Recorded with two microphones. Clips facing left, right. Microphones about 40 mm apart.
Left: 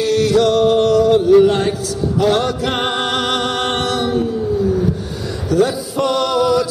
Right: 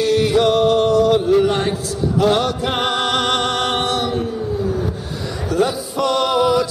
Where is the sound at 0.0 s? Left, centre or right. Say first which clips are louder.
Left 1 dB; centre.